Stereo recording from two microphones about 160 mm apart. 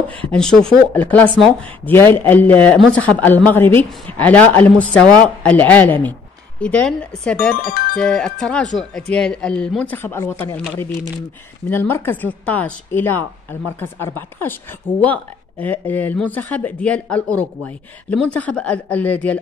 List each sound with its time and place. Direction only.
0.3 s a man's voice: 5° left (ahead or behind)
7.6 s speech: 60° left (ahead or behind)
8.0 s a man's voice: 5° left (ahead or behind)
11.7 s a man's voice: 15° left (ahead or behind)
15.9 s a man's voice: 10° left (ahead or behind)